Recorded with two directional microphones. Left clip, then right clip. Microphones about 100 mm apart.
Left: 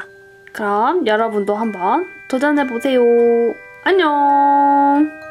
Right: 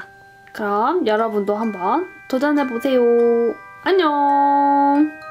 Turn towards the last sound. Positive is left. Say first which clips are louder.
# left 3 dB
turn(degrees=5)  # may be behind; listen again after turning